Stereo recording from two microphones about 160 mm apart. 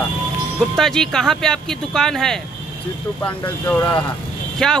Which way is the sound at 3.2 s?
15° left (ahead or behind).